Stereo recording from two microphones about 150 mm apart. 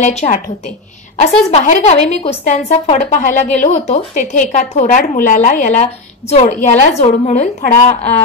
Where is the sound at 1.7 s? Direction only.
50° left (ahead or behind).